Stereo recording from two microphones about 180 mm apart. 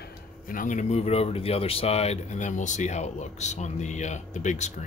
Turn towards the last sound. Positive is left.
turn(degrees=40)  # may be behind; listen again after turning